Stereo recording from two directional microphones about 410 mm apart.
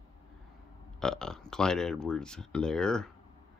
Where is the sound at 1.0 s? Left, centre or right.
Centre.